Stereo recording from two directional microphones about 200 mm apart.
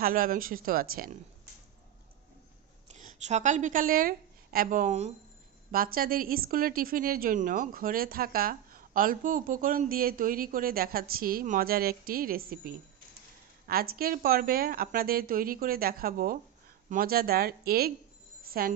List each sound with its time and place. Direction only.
0.0 s a woman's voice: 45° right (ahead or behind)
2.9 s a woman's voice: 35° right (ahead or behind)
5.7 s a woman's voice: 45° right (ahead or behind)
18.4 s music: 50° right (ahead or behind)